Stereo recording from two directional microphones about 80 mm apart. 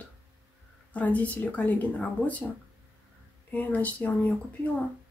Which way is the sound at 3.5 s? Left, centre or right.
Left.